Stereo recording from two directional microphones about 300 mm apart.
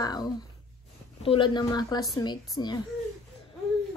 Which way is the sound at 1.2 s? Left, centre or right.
Centre.